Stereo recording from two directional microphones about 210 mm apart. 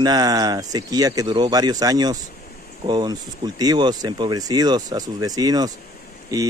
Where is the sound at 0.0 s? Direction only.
20° right (ahead or behind).